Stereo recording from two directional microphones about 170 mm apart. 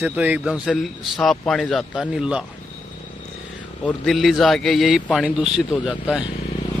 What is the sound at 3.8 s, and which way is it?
A man's voice, centre (ahead or behind).